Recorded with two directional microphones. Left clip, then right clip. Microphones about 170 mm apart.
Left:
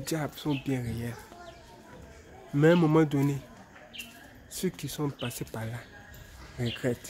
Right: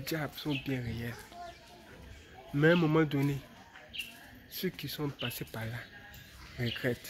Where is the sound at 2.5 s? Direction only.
15° left (ahead or behind).